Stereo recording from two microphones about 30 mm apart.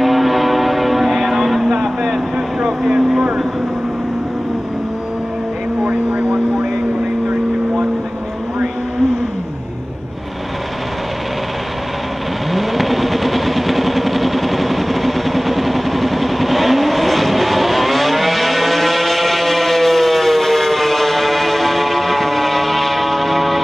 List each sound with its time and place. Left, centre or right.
0.0 s vehicle: centre
5.9 s vehicle: right
12.5 s vehicle: centre